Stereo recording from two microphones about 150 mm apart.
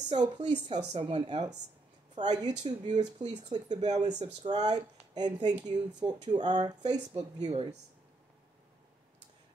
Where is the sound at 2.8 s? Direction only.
50° right (ahead or behind).